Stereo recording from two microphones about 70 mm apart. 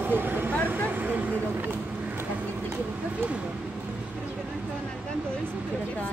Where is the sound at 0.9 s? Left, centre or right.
Right.